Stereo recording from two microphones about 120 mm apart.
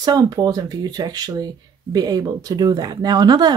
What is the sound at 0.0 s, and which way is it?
Speech, 35° right (ahead or behind).